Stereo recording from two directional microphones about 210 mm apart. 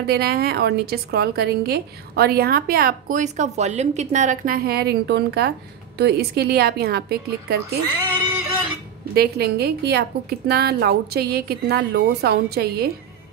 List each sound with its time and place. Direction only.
0.0 s a woman's voice: 50° right (ahead or behind)
9.1 s a woman's voice: 50° right (ahead or behind)